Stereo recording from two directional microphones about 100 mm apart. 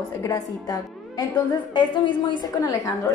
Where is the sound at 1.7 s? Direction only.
50° left (ahead or behind).